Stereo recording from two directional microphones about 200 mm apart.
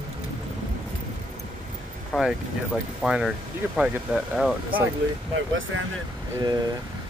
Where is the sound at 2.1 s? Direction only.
Centre (ahead or behind).